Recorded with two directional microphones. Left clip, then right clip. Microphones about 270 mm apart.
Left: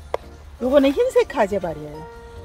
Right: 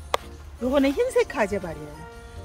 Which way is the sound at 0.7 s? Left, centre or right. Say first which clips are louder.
Left 6 dB; left.